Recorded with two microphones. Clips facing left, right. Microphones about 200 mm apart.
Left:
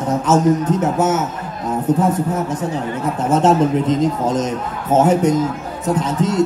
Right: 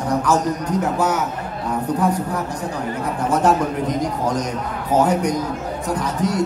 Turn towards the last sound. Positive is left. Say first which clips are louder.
# left 4 dB
turn(degrees=25)  # may be behind; listen again after turning